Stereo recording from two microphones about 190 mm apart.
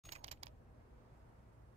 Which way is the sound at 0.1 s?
35° right (ahead or behind).